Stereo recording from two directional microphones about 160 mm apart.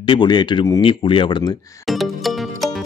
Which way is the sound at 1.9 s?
Centre (ahead or behind).